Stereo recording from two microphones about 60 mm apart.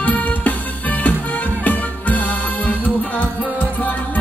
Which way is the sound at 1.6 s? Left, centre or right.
Left.